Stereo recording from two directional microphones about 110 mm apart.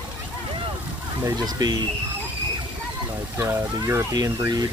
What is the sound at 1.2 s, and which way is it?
Speech, 35° right (ahead or behind).